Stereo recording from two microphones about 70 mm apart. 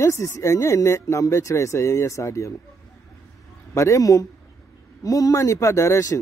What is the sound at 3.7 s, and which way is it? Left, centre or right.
Speech, left.